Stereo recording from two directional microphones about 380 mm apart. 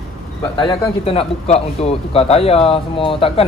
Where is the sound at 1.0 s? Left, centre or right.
Centre.